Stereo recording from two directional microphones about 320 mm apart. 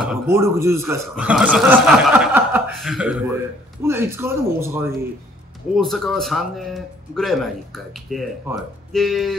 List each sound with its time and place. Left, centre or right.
0.1 s speech: centre